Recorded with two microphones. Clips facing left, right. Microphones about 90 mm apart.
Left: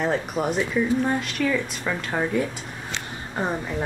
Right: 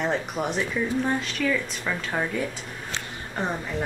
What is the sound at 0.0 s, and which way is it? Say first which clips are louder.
A woman's voice: left 2 dB; centre (ahead or behind).